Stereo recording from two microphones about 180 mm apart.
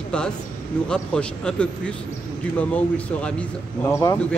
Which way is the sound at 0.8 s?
5° left (ahead or behind).